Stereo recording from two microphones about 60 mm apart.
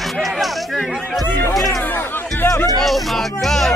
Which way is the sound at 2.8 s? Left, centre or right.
Centre.